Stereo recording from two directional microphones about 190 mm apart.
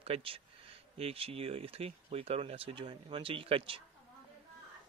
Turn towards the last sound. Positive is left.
turn(degrees=-30)  # may be behind; listen again after turning